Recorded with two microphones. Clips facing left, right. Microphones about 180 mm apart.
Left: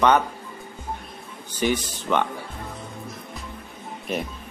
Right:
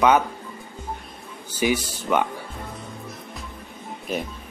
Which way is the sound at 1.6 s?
10° right (ahead or behind).